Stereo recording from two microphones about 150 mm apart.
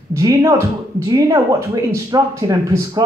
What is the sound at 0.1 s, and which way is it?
Speech, 20° right (ahead or behind).